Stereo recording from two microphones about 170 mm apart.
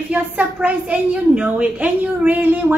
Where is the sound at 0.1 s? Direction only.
10° right (ahead or behind).